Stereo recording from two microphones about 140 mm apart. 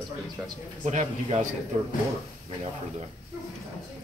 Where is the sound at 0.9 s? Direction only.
60° right (ahead or behind).